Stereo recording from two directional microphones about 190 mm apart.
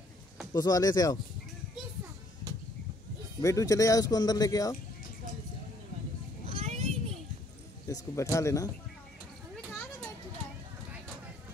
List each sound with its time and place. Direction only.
0.5 s speech: 20° left (ahead or behind)
3.4 s speech: 15° left (ahead or behind)
6.5 s children playing: 35° right (ahead or behind)
7.9 s speech: 20° left (ahead or behind)